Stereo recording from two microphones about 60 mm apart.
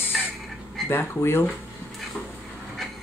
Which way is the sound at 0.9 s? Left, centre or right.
Left.